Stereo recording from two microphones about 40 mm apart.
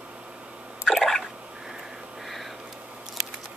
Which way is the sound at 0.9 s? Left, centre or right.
Centre.